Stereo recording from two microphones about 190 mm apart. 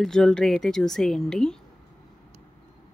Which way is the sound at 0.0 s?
Centre (ahead or behind).